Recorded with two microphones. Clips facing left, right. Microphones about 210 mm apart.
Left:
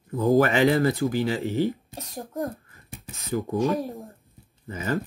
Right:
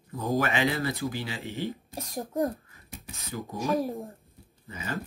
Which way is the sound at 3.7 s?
15° right (ahead or behind).